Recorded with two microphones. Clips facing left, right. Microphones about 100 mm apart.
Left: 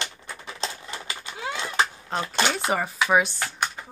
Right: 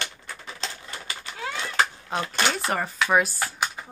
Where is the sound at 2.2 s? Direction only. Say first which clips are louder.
Left 1 dB; 20° left (ahead or behind).